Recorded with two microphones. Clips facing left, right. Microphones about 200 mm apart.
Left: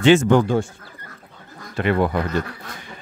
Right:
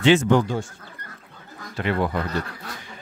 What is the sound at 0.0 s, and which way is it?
Speech, 50° left (ahead or behind).